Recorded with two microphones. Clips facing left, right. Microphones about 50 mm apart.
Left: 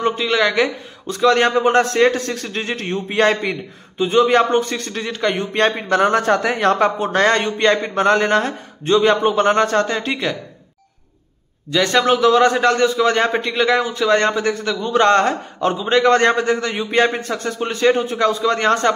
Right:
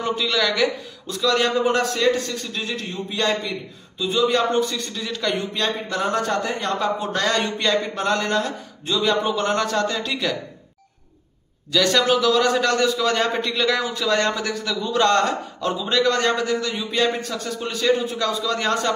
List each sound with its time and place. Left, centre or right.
0.0 s a man's voice: left
2.9 s a man's voice: left
4.0 s a man's voice: left
5.0 s a man's voice: left
7.0 s a man's voice: left
11.7 s a man's voice: left